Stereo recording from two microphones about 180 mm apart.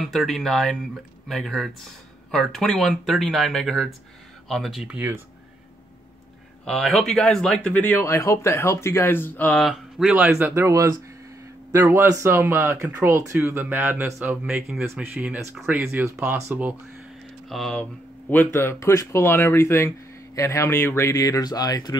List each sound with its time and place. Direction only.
0.0 s speech: centre (ahead or behind)
6.6 s speech: 5° left (ahead or behind); by 21.9 s 20° left (ahead or behind)